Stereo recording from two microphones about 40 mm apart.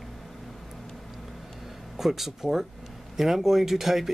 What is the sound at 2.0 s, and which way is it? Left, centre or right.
Speech, centre.